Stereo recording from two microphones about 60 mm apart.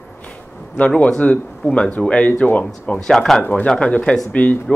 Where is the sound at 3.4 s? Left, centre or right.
Left.